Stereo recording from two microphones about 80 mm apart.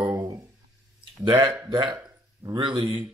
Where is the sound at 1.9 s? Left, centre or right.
Right.